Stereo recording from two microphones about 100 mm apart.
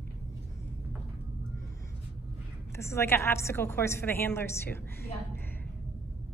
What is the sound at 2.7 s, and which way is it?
A woman's voice, 25° left (ahead or behind).